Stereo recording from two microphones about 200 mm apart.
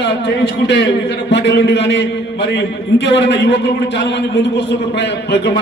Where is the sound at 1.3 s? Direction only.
60° left (ahead or behind).